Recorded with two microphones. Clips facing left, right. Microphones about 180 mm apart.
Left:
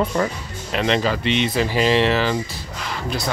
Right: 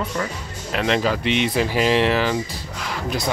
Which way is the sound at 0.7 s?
5° right (ahead or behind).